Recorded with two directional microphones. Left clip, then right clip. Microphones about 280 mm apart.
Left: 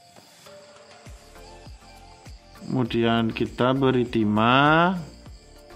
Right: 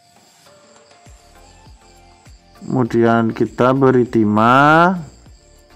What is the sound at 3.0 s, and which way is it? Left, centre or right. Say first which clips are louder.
Speech: right 9 dB; centre.